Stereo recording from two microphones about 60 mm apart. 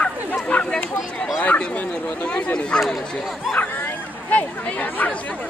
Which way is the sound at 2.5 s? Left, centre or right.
Centre.